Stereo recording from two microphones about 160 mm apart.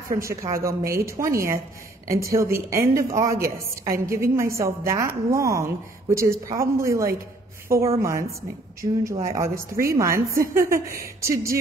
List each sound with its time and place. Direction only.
0.1 s a woman's voice: 20° right (ahead or behind)